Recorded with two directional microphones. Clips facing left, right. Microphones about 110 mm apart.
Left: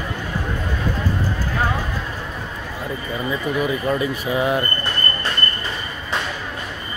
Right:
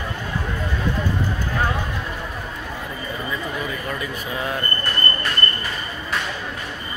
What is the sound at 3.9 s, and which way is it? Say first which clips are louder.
Speech: left 7 dB; 20° left (ahead or behind).